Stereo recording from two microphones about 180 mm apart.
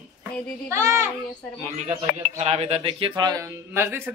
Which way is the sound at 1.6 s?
35° right (ahead or behind).